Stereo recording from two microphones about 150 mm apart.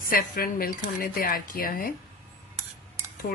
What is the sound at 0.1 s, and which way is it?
Speech, 75° left (ahead or behind).